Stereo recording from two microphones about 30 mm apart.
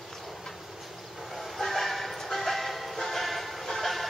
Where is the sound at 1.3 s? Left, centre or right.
Centre.